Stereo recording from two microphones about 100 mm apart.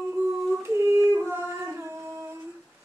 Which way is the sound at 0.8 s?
30° right (ahead or behind).